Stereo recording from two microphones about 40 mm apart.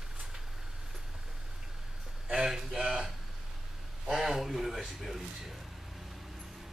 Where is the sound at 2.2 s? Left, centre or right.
Centre.